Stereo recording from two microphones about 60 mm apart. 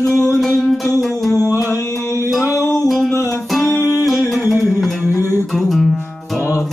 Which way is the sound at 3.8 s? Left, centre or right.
Left.